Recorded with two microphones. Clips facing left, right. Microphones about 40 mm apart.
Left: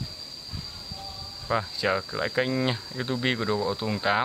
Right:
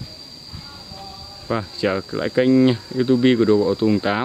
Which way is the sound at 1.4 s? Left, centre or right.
Centre.